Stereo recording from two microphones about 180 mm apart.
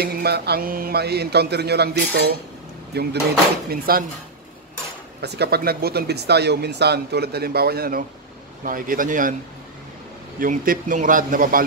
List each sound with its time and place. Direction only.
0.0 s speech: 60° right (ahead or behind)
5.2 s a man's voice: 65° right (ahead or behind); by 9.3 s 50° right (ahead or behind)
10.4 s a man's voice: 50° right (ahead or behind)